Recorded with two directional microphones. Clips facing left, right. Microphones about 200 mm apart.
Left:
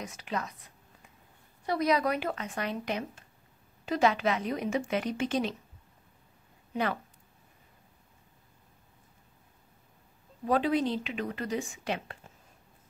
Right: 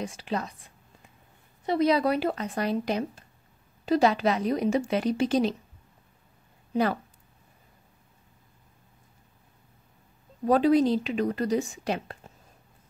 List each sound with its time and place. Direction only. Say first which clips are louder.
0.0 s a woman's voice: right 4 dB; 30° right (ahead or behind)
6.7 s speech: right 6 dB; 35° right (ahead or behind)
10.4 s a woman's voice: right 6 dB; 40° right (ahead or behind)